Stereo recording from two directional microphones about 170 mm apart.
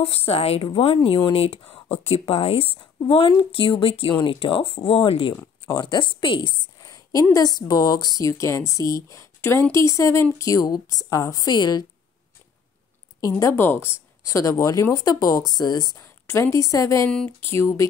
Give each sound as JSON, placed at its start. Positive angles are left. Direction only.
{"t": 0.0, "sound": "a woman's voice", "side_deg": 35}
{"t": 13.2, "sound": "a woman's voice", "side_deg": 15}